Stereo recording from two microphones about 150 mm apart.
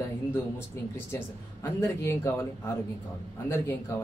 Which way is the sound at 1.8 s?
15° left (ahead or behind).